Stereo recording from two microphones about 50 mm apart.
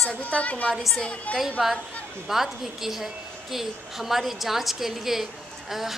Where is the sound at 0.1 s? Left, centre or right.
Left.